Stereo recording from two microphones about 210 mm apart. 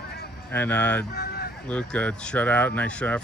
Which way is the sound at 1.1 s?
50° left (ahead or behind).